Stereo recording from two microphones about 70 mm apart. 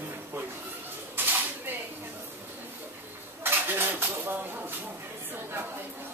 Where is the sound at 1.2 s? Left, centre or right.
Right.